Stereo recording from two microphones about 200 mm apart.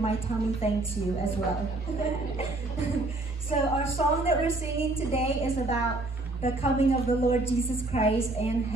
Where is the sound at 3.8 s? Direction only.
30° left (ahead or behind).